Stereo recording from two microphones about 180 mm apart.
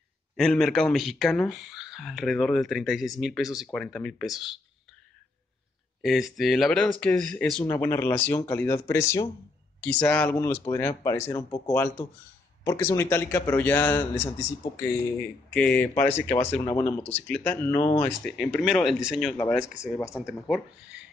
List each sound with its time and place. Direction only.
0.4 s speech: centre (ahead or behind)
6.0 s speech: centre (ahead or behind)
16.6 s speech: 25° left (ahead or behind)
17.1 s speech: 10° left (ahead or behind)